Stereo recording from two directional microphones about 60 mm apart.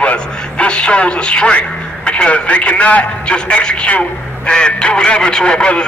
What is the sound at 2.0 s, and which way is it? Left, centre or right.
A man's voice, centre.